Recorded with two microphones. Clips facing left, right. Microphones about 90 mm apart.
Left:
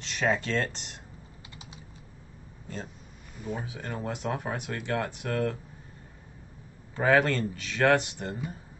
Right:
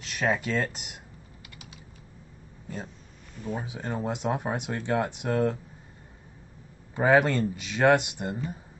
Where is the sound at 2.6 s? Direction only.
10° right (ahead or behind).